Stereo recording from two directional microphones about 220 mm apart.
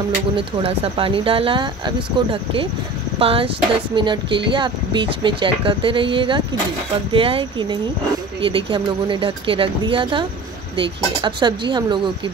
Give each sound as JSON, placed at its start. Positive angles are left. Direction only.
{"t": 0.4, "sound": "speech", "side_deg": -25}
{"t": 3.2, "sound": "speech", "side_deg": -25}